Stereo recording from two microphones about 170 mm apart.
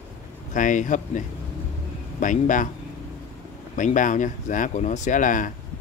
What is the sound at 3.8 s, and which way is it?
Speech, 50° left (ahead or behind).